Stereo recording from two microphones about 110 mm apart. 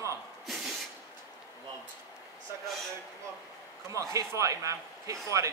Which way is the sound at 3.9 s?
30° right (ahead or behind).